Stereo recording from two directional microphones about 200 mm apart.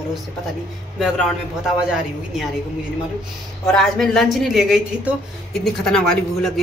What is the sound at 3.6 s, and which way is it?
A woman's voice, centre (ahead or behind).